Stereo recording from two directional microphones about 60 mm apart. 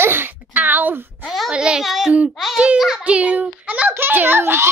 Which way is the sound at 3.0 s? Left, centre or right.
Right.